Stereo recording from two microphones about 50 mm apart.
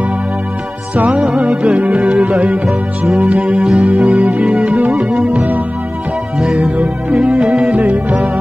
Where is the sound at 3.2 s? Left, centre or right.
Right.